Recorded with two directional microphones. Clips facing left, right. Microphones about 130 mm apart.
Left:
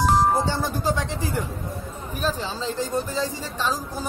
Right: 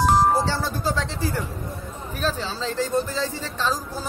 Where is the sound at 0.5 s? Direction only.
15° left (ahead or behind).